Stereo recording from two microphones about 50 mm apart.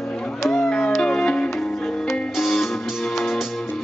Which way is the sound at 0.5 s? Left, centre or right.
Centre.